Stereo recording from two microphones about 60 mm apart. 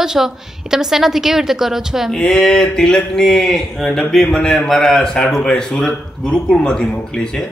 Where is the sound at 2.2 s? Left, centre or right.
Centre.